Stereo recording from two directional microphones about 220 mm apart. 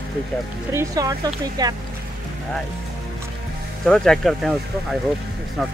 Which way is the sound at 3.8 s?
5° left (ahead or behind).